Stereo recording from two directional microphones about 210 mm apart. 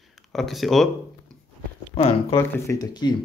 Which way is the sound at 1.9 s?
25° left (ahead or behind).